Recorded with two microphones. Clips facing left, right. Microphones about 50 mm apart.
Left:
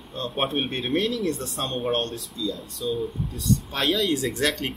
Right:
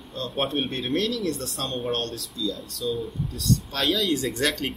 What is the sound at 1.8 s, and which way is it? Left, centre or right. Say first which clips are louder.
Speech: left 4 dB; centre.